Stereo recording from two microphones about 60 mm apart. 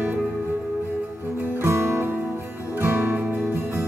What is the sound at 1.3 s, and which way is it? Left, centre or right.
Music, right.